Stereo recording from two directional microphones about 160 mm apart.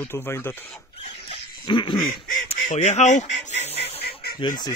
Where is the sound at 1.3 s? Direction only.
30° left (ahead or behind).